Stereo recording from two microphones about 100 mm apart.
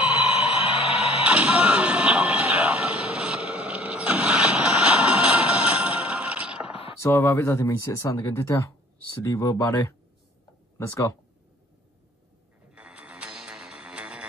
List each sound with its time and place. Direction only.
0.0 s a sound: 10° right (ahead or behind)
0.7 s music: 75° left (ahead or behind)
1.2 s music: 10° right (ahead or behind)
6.7 s a sound: 70° left (ahead or behind)
7.0 s speech: 25° left (ahead or behind)
9.7 s speech: 25° left (ahead or behind)
12.7 s music: 10° right (ahead or behind)